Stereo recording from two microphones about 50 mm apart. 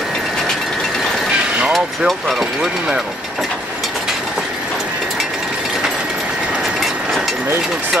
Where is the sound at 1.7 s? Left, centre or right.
Centre.